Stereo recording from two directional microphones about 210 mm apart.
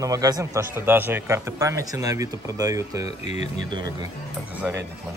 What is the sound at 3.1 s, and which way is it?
Speech, 30° left (ahead or behind).